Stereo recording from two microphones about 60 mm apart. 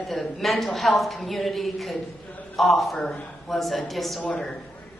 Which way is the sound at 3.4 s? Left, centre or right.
Centre.